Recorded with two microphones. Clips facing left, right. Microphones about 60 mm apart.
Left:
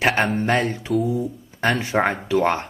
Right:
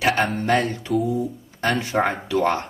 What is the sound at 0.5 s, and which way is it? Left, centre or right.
Speech, left.